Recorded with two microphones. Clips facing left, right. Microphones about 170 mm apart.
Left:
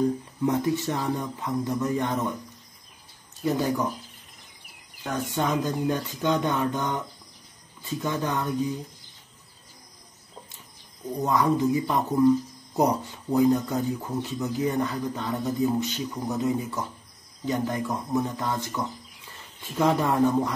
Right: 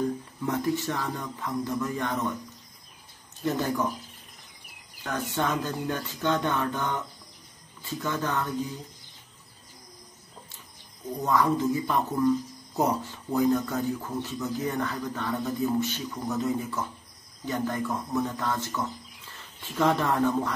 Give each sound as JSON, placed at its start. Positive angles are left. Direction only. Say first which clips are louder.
{"t": 0.5, "sound": "speech", "louder": "left 2 dB", "side_deg": 20}
{"t": 3.4, "sound": "speech", "louder": "left 2 dB", "side_deg": 10}
{"t": 5.0, "sound": "speech", "louder": "left 2 dB", "side_deg": 15}
{"t": 11.2, "sound": "speech", "louder": "left 1 dB", "side_deg": 15}